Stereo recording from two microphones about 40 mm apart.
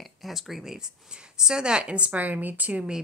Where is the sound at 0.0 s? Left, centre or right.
Centre; by 2.2 s right.